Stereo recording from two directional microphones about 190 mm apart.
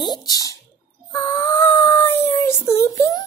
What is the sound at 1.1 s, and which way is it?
Dog, 15° left (ahead or behind).